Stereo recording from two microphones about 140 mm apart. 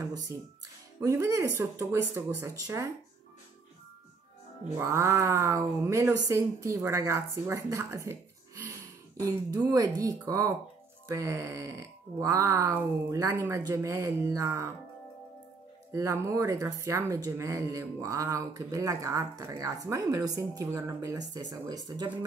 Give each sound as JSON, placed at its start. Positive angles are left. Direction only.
{"t": 0.0, "sound": "a sound", "side_deg": -25}
{"t": 0.9, "sound": "speech", "side_deg": -20}
{"t": 4.7, "sound": "speech", "side_deg": -20}
{"t": 15.9, "sound": "speech", "side_deg": -20}